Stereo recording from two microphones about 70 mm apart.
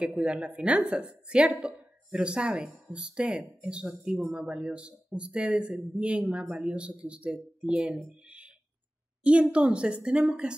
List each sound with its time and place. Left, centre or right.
0.0 s speech: centre